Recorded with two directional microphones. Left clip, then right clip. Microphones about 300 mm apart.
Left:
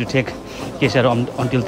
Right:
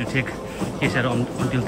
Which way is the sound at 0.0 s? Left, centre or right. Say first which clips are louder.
Left 4 dB; centre.